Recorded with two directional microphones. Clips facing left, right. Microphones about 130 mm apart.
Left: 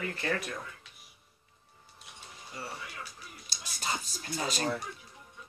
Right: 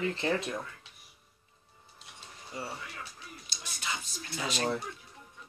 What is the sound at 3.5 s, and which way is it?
Whispering, 40° left (ahead or behind).